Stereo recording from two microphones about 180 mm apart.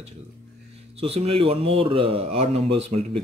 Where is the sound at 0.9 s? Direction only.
35° right (ahead or behind).